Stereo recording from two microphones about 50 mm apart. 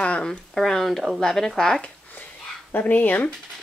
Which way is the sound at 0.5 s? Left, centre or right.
Centre.